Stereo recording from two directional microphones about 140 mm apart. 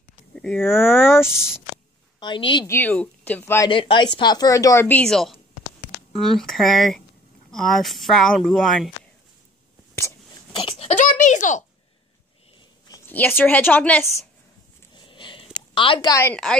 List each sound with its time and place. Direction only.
0.4 s speech: 5° left (ahead or behind)
0.7 s speech: 15° left (ahead or behind)
1.2 s speech: 5° right (ahead or behind)
2.1 s a woman's voice: 35° left (ahead or behind)
2.6 s speech: 15° left (ahead or behind)
3.6 s a woman's voice: 35° left (ahead or behind); by 8.9 s centre (ahead or behind)
10.5 s wail: 40° left (ahead or behind)
11.0 s a sound: 60° left (ahead or behind)
13.0 s speech: 15° left (ahead or behind)
15.0 s a sound: 35° left (ahead or behind)